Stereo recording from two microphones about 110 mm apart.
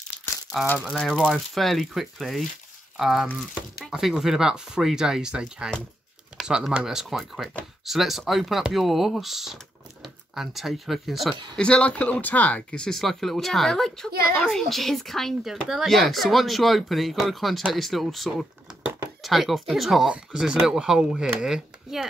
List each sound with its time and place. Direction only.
0.7 s speech: centre (ahead or behind)